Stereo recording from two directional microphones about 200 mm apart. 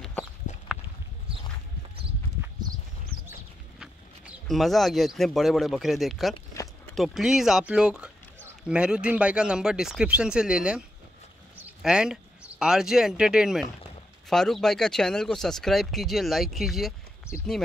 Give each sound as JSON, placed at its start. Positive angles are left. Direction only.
{"t": 3.8, "sound": "speech", "side_deg": 0}